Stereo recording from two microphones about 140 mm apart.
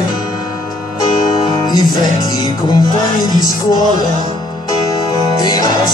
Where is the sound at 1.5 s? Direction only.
30° left (ahead or behind).